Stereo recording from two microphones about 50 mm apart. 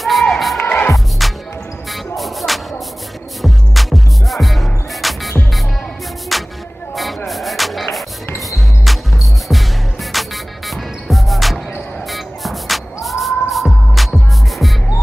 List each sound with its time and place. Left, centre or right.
0.0 s crowd: centre
1.2 s music: centre
6.3 s music: centre